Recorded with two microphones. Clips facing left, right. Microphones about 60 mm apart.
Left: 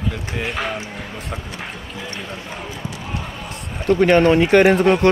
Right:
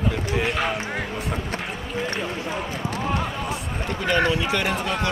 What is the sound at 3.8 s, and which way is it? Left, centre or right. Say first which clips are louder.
Speech: left 9 dB; left.